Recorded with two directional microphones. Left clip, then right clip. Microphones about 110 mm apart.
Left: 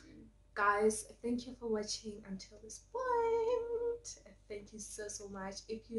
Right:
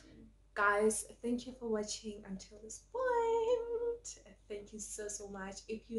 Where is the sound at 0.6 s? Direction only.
15° right (ahead or behind).